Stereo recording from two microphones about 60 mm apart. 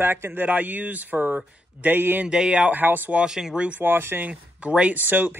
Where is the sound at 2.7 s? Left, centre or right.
Right.